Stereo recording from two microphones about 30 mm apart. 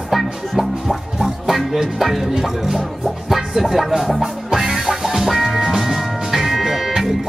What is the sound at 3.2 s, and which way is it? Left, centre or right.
Music, centre.